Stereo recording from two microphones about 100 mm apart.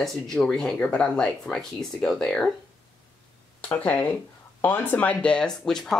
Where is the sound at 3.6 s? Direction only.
15° left (ahead or behind).